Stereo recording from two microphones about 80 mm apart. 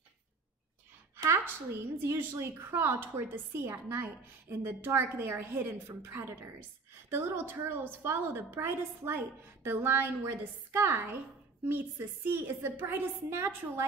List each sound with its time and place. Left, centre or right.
1.1 s a woman's voice: right